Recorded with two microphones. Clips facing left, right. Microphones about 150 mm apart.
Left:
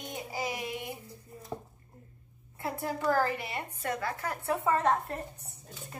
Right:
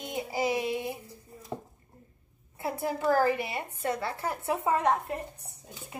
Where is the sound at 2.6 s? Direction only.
20° right (ahead or behind).